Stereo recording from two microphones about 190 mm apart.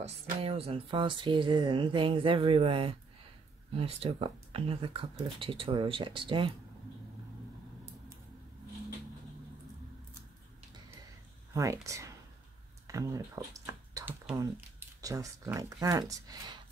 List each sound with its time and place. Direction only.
0.0 s speech: 30° right (ahead or behind)
11.5 s speech: 15° right (ahead or behind)
12.8 s a sound: 15° right (ahead or behind)
14.3 s speech: 15° right (ahead or behind)